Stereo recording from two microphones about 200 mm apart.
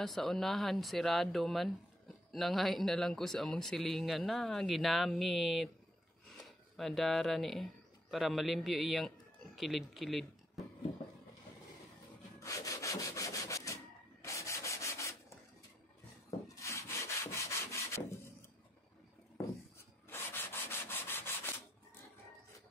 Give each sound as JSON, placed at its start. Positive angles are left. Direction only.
{"t": 0.0, "sound": "speech", "side_deg": 0}
{"t": 6.8, "sound": "speech", "side_deg": 0}
{"t": 12.4, "sound": "wood", "side_deg": 15}
{"t": 14.2, "sound": "sanding", "side_deg": 15}
{"t": 16.4, "sound": "rub", "side_deg": 15}
{"t": 20.1, "sound": "sanding", "side_deg": 10}